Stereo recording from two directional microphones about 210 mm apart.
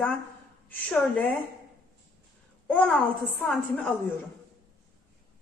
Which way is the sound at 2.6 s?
5° left (ahead or behind).